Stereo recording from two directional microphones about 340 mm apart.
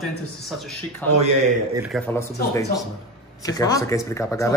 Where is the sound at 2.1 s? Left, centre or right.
Centre.